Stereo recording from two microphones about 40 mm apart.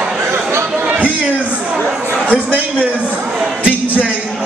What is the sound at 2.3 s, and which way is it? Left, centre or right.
Speech, right.